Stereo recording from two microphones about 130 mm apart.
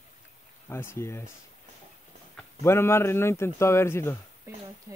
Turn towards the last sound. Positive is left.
turn(degrees=20)  # may be behind; listen again after turning